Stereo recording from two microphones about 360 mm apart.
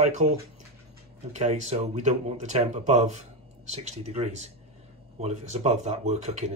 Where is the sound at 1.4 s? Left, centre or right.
Centre.